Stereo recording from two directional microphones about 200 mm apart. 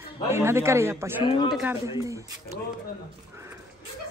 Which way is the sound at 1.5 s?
Centre (ahead or behind).